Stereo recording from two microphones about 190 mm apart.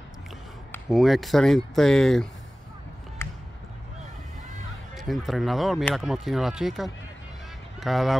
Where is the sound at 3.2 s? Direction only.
10° left (ahead or behind).